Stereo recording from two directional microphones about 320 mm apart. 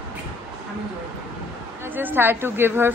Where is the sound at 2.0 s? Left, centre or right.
Centre.